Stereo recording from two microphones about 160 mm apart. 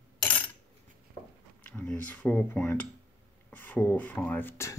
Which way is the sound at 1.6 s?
10° left (ahead or behind).